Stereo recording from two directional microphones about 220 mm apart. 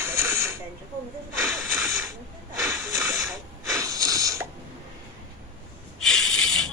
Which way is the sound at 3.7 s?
15° right (ahead or behind).